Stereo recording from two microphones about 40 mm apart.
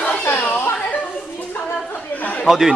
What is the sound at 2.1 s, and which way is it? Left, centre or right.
Chatter, left.